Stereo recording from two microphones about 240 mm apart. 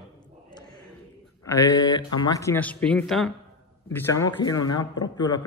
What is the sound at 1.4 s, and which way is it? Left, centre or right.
A man's voice, centre.